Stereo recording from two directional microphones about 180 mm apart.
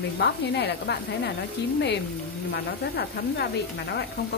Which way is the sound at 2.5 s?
65° left (ahead or behind).